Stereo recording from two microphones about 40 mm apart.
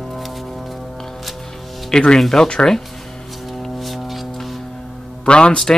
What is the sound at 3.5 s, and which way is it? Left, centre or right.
Music, centre.